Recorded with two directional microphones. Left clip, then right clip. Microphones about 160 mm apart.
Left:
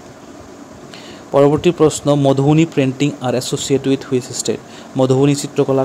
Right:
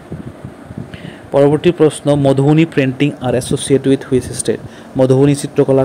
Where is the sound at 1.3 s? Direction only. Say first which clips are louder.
Right 1 dB; 5° right (ahead or behind).